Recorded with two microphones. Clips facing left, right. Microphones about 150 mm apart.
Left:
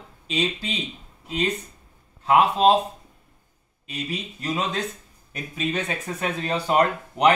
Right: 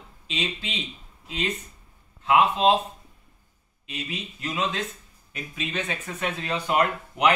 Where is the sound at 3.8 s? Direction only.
40° left (ahead or behind).